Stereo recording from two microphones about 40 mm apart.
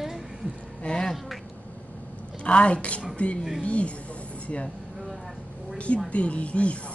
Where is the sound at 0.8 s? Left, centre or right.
Left.